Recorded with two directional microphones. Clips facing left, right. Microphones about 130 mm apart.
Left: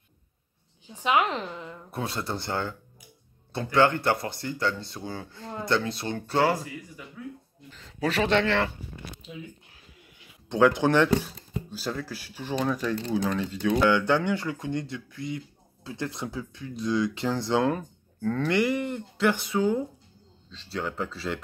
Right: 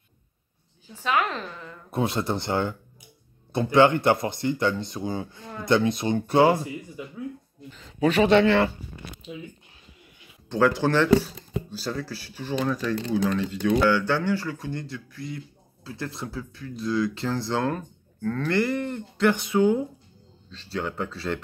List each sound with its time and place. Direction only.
0.8 s speech: 20° left (ahead or behind)
1.9 s speech: 20° right (ahead or behind)
7.7 s speech: 5° right (ahead or behind)
10.8 s speech: 15° left (ahead or behind)
13.8 s speech: 25° left (ahead or behind); by 21.4 s centre (ahead or behind)